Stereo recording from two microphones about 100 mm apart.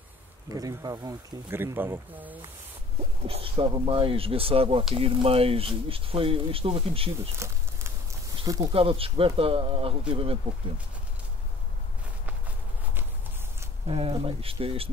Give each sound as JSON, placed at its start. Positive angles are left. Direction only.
{"t": 0.5, "sound": "speech", "side_deg": -35}
{"t": 1.5, "sound": "speech", "side_deg": -20}
{"t": 3.3, "sound": "speech", "side_deg": -70}
{"t": 7.3, "sound": "a sound", "side_deg": -30}
{"t": 8.5, "sound": "speech", "side_deg": -40}
{"t": 8.7, "sound": "speech", "side_deg": -70}
{"t": 13.8, "sound": "speech", "side_deg": -75}